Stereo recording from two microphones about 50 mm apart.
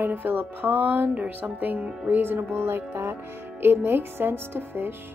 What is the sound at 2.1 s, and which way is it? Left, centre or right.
Speech, right.